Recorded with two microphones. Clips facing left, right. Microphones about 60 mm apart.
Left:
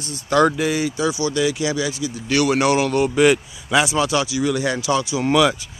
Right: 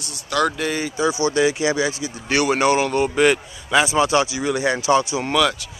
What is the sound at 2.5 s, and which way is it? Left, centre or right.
Speech, centre.